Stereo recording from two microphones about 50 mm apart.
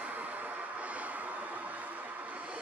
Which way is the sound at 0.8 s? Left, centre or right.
Right.